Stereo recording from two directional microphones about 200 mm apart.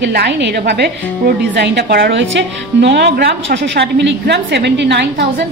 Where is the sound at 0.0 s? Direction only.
55° right (ahead or behind).